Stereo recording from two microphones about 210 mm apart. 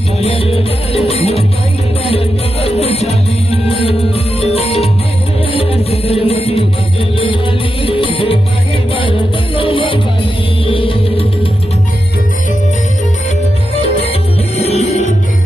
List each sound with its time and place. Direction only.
0.2 s music: 30° left (ahead or behind)
4.4 s music: 30° left (ahead or behind)
7.8 s music: 25° left (ahead or behind)
14.6 s music: 30° left (ahead or behind)